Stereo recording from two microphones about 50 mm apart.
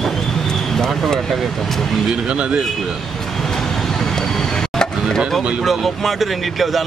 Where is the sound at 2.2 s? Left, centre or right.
Centre.